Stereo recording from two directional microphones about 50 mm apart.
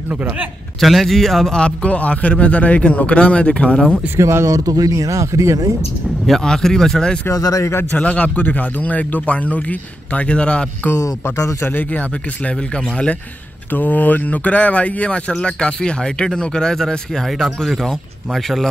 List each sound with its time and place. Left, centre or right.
0.1 s a man's voice: right
0.7 s speech: centre
1.6 s speech: left
4.2 s speech: right
4.9 s speech: right
6.4 s speech: centre
7.2 s speech: left
7.9 s speech: left
11.6 s speech: left
13.7 s speech: left; by 18.7 s centre